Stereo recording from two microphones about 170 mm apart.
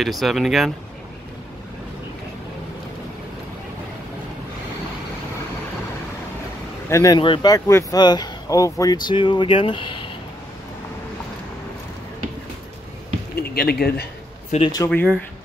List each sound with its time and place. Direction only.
0.0 s speech: centre (ahead or behind)
6.9 s speech: 15° left (ahead or behind)
7.2 s speech: 30° left (ahead or behind)
13.4 s speech: 65° left (ahead or behind)
14.5 s speech: 40° left (ahead or behind)
14.9 s speech: 5° left (ahead or behind)